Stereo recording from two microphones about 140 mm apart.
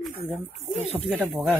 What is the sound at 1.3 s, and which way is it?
Speech, centre (ahead or behind).